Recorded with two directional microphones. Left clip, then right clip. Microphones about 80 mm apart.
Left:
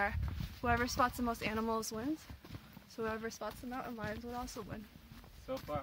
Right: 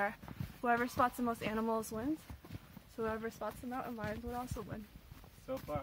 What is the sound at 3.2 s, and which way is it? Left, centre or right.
Speech, centre.